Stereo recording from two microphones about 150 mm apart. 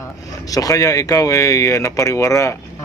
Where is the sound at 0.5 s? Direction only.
25° left (ahead or behind).